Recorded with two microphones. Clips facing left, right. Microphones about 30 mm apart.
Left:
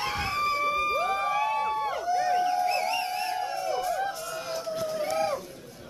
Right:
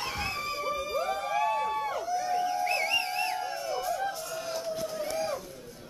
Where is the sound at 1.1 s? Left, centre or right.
Left.